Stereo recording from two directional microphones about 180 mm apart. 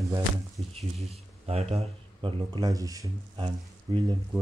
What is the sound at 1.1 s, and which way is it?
Speech, 35° right (ahead or behind).